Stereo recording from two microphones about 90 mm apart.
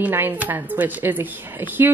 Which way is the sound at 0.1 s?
20° right (ahead or behind).